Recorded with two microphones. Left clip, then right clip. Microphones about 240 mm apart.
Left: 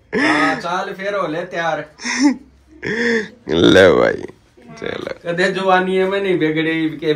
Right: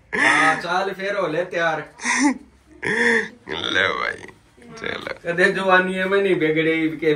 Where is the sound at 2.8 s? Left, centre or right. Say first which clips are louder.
Even; centre.